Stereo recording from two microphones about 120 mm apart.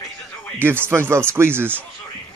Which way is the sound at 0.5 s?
20° right (ahead or behind).